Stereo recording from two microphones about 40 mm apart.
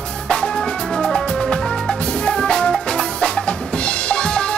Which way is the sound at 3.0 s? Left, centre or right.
Left.